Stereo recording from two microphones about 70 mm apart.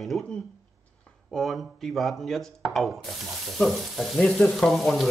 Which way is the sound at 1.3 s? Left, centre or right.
Centre.